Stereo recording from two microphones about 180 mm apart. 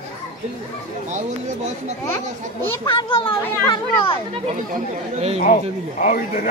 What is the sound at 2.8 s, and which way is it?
Speech, 30° left (ahead or behind).